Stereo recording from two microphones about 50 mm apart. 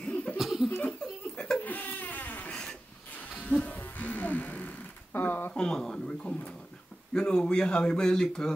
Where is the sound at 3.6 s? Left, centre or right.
Left.